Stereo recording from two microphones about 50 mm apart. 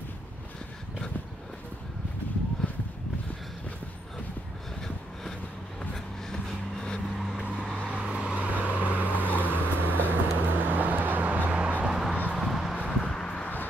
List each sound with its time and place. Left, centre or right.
6.3 s vehicle: centre
7.7 s vehicle: right
11.9 s a sound: centre
12.4 s vehicle: centre
12.9 s vehicle: centre